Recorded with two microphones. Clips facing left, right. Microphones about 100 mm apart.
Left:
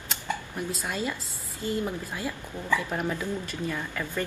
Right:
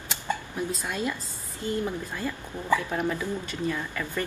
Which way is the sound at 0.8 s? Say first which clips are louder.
Right 1 dB; centre (ahead or behind).